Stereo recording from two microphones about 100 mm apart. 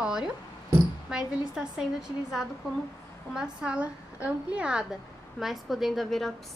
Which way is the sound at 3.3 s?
10° right (ahead or behind).